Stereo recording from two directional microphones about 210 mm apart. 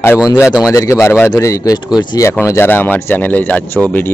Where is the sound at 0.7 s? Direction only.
15° left (ahead or behind).